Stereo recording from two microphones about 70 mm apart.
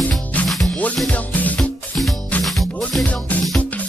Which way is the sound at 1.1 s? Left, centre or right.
Left.